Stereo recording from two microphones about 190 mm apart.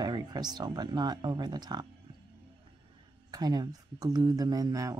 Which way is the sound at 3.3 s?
20° right (ahead or behind).